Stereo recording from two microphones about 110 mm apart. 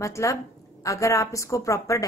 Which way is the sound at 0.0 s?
30° left (ahead or behind).